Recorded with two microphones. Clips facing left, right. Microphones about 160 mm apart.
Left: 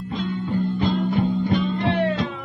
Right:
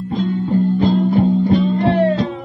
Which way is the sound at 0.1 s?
40° right (ahead or behind).